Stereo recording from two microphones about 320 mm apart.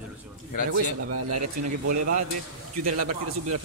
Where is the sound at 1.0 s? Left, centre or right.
Right.